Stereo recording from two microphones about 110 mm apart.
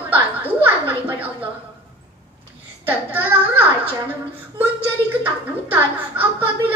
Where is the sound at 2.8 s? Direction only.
15° right (ahead or behind).